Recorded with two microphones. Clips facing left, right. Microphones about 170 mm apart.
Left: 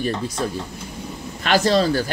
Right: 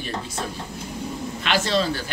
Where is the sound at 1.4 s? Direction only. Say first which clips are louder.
Left 5 dB; 40° left (ahead or behind).